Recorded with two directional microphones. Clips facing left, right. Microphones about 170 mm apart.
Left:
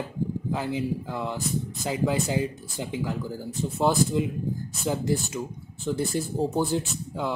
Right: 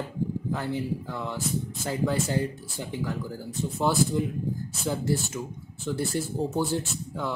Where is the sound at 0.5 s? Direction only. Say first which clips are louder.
Left 3 dB; 20° left (ahead or behind).